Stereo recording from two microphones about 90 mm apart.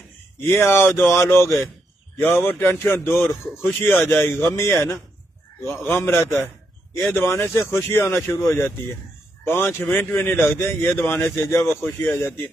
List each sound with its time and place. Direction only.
0.6 s a man's voice: 25° left (ahead or behind)